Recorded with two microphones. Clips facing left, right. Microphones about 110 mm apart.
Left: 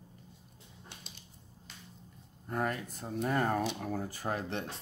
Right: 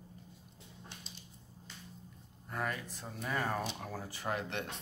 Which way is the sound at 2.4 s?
45° left (ahead or behind).